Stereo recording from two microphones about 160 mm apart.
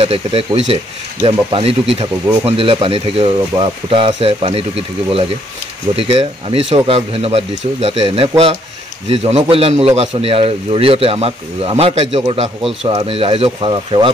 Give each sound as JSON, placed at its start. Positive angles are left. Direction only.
{"t": 0.0, "sound": "a man's voice", "side_deg": -35}